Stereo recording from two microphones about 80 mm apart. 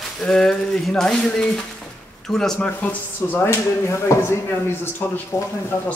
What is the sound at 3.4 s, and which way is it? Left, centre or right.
Speech, left.